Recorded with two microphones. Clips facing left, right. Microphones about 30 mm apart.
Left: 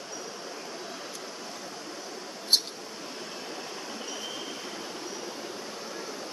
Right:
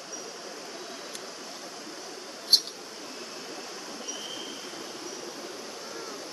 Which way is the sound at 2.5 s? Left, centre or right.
Right.